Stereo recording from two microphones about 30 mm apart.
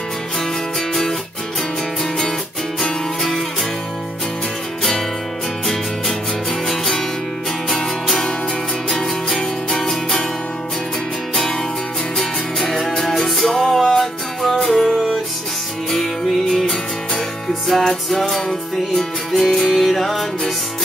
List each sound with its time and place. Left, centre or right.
0.7 s music: centre
2.8 s music: centre
6.6 s music: centre
12.5 s music: centre
17.6 s music: centre